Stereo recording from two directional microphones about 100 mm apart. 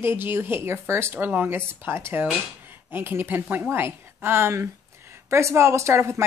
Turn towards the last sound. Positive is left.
turn(degrees=-25)  # may be behind; listen again after turning